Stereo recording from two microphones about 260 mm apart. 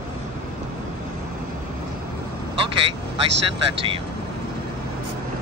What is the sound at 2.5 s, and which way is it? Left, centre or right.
Vehicle, right.